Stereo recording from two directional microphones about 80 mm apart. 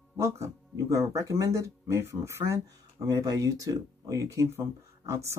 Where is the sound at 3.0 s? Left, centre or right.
Right.